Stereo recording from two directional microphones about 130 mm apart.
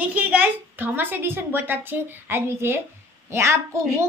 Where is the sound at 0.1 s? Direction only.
10° right (ahead or behind).